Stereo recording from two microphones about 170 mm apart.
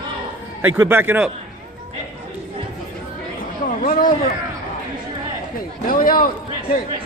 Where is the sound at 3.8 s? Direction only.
55° left (ahead or behind).